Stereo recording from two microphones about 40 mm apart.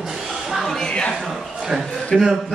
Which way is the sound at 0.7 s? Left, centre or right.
Centre.